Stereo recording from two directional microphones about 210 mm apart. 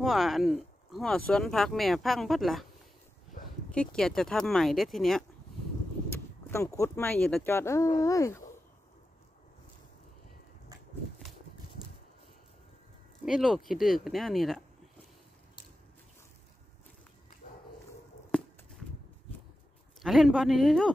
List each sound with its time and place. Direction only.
0.0 s speech: centre (ahead or behind)
3.7 s speech: 5° left (ahead or behind)
6.1 s speech: 15° left (ahead or behind)
13.2 s speech: centre (ahead or behind)
17.4 s dog: 40° left (ahead or behind)
18.3 s walk: 5° left (ahead or behind)
20.0 s speech: centre (ahead or behind)